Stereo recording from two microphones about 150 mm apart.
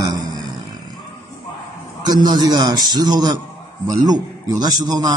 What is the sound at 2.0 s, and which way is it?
A man's voice, 25° right (ahead or behind).